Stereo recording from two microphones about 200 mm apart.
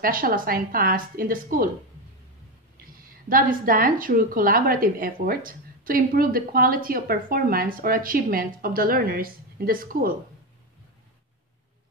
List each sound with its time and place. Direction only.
0.0 s a woman's voice: 45° right (ahead or behind)
3.0 s a woman's voice: 45° right (ahead or behind)